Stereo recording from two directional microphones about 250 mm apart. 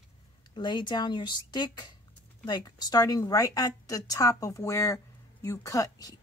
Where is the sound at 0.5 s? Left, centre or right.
Centre.